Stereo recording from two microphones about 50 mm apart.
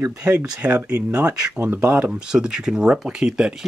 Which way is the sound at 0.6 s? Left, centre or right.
Right.